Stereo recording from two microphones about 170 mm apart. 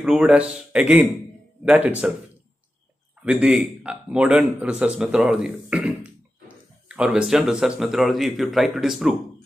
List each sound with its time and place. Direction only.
0.0 s a man's voice: 5° right (ahead or behind)
3.3 s a man's voice: 5° right (ahead or behind)